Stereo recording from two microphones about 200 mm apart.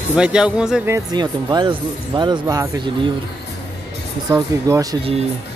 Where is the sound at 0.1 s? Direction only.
5° right (ahead or behind).